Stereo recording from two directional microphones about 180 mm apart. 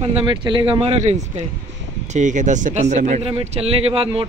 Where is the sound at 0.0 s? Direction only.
30° right (ahead or behind).